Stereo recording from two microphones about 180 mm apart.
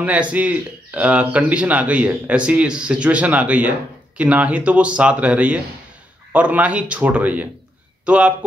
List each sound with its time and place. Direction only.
0.0 s speech: 10° right (ahead or behind)